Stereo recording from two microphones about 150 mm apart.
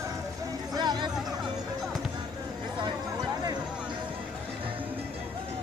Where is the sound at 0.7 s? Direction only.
30° right (ahead or behind).